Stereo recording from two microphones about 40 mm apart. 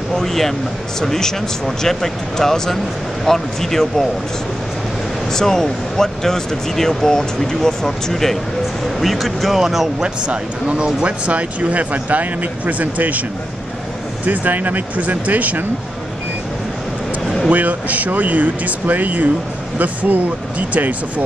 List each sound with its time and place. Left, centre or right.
0.1 s speech: centre
5.3 s speech: centre
10.0 s speech: right
14.2 s speech: right
17.5 s speech: right